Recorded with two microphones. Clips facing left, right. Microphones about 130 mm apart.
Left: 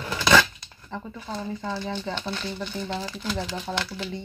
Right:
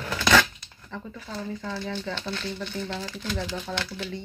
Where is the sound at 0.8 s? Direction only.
25° left (ahead or behind).